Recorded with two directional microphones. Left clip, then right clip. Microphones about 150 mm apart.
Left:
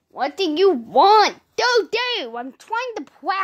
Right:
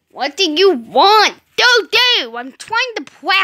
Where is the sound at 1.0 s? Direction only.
Centre (ahead or behind).